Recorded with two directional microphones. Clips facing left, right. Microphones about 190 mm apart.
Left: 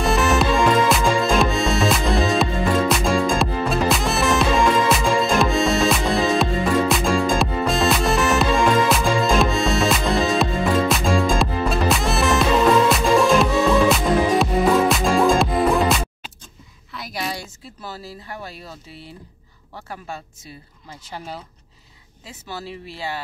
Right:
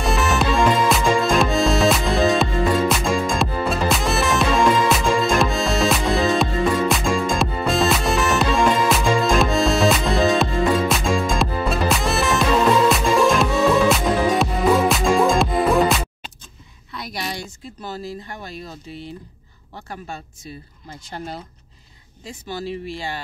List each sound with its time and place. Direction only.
0.0 s music: centre (ahead or behind)
18.0 s a sound: 5° left (ahead or behind)
22.8 s speech: 5° left (ahead or behind)